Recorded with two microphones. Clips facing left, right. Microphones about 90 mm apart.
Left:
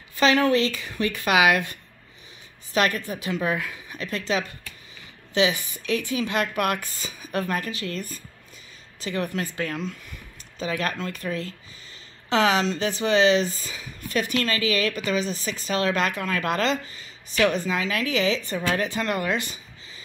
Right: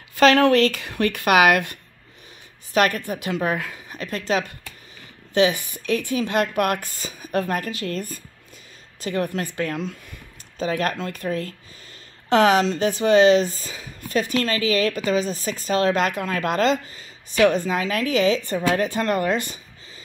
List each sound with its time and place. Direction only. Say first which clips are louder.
0.1 s speech: right 4 dB; 60° right (ahead or behind); by 19.6 s 45° right (ahead or behind)